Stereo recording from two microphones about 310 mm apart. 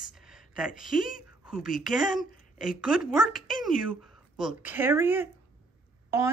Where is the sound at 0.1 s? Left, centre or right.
Centre.